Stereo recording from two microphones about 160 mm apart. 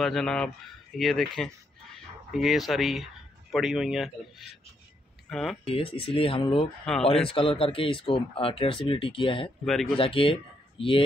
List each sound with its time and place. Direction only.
0.0 s speech: 5° left (ahead or behind)
5.7 s speech: 35° left (ahead or behind)
9.7 s speech: centre (ahead or behind)
9.9 s speech: 35° left (ahead or behind)